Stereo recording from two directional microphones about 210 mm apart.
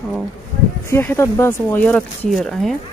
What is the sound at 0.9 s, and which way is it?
Speech, 10° left (ahead or behind).